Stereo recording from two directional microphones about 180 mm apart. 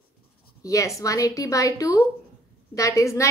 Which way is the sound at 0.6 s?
20° left (ahead or behind).